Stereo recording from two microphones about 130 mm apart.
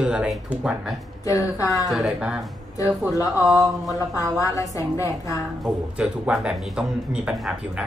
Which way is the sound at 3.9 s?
25° left (ahead or behind).